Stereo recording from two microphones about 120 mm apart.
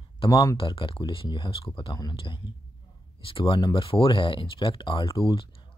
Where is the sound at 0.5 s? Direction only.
45° left (ahead or behind).